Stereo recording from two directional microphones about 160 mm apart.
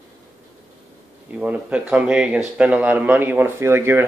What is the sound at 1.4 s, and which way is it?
Speech, 5° right (ahead or behind).